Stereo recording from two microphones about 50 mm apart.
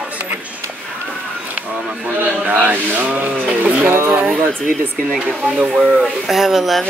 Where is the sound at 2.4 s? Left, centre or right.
Right.